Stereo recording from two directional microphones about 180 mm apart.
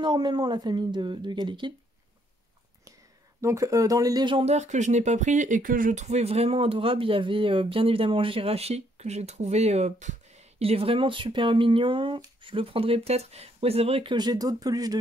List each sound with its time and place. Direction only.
0.0 s speech: 25° right (ahead or behind)
3.3 s speech: 15° right (ahead or behind)